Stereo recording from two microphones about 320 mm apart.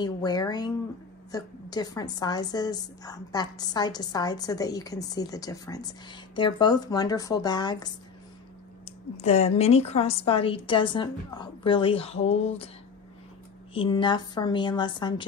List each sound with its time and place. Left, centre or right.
0.0 s a woman's voice: centre
9.2 s a woman's voice: centre
13.7 s a woman's voice: centre